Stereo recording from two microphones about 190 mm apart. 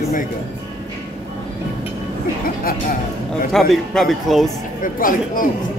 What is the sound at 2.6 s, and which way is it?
Speech, 50° left (ahead or behind).